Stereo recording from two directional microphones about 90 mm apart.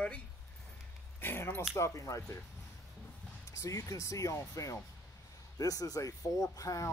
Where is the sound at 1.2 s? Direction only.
25° left (ahead or behind).